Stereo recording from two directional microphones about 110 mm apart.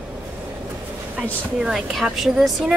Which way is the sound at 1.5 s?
5° right (ahead or behind).